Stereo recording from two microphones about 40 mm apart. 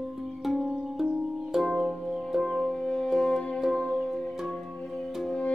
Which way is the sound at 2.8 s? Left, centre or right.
Left.